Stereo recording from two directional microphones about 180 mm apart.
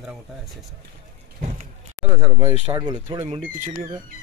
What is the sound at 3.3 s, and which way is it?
Speech, 40° right (ahead or behind).